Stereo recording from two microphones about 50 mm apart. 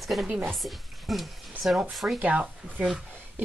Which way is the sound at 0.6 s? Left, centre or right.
Centre.